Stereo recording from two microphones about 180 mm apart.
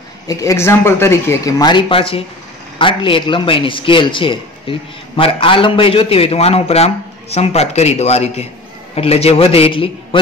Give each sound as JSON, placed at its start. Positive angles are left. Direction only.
{"t": 0.3, "sound": "a man's voice", "side_deg": 20}